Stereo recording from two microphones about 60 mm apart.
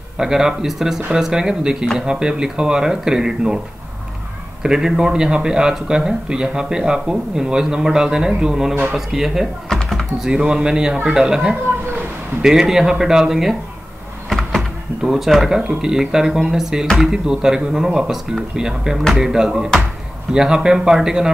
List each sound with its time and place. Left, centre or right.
0.2 s speech: centre
4.6 s speech: centre